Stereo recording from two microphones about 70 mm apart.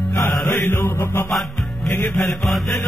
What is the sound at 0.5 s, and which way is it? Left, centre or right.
Mantra, left.